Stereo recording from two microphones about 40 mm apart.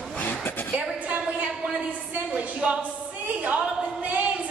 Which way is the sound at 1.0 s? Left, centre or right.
Right.